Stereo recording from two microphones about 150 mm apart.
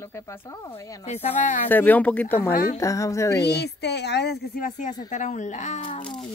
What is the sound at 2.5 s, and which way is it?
Speech, 70° left (ahead or behind).